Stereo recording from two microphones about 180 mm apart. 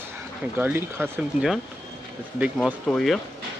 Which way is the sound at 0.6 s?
10° right (ahead or behind).